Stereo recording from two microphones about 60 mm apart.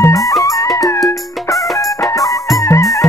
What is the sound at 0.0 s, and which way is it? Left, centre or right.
Music, left.